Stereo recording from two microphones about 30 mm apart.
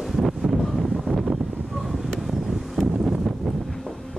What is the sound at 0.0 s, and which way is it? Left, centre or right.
Wind noise, centre.